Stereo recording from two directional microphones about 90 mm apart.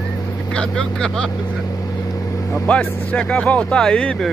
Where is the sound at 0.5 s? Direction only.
10° left (ahead or behind).